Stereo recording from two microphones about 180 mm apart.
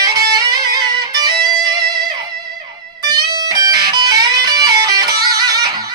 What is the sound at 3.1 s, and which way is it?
Music, 20° right (ahead or behind).